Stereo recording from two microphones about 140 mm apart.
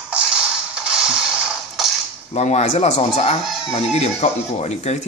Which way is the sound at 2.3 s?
50° left (ahead or behind).